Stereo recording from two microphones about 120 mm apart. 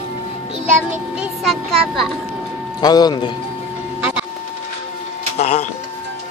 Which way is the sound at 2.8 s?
35° left (ahead or behind).